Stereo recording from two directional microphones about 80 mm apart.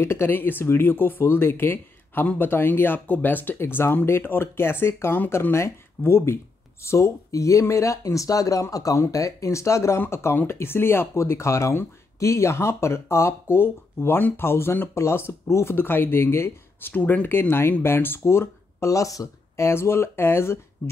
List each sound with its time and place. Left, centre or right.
0.0 s speech: left